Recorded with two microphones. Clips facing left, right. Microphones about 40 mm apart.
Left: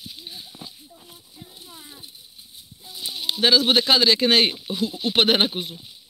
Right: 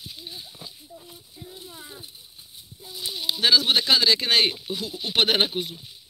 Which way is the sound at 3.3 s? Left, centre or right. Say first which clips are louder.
Left 2 dB; left.